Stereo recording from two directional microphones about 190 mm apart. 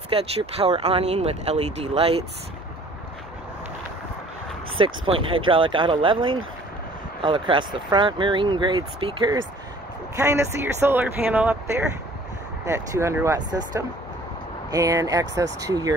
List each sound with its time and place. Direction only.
0.1 s speech: 30° right (ahead or behind)
4.7 s speech: 25° right (ahead or behind)